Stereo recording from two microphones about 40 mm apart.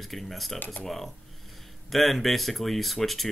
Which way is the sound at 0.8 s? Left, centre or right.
Centre.